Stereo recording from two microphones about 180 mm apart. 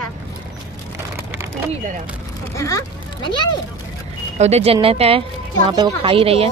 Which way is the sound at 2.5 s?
20° left (ahead or behind).